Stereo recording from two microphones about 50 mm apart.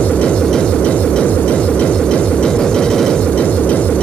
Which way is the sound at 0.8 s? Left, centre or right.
Left.